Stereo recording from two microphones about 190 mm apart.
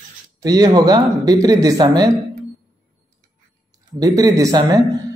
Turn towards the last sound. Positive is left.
turn(degrees=-20)  # may be behind; listen again after turning